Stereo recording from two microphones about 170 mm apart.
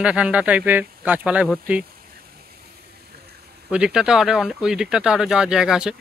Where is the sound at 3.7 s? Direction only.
5° right (ahead or behind).